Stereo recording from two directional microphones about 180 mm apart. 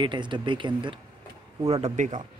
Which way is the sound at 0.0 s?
25° right (ahead or behind).